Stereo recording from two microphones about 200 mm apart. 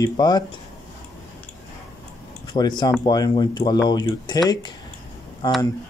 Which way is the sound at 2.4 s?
25° left (ahead or behind).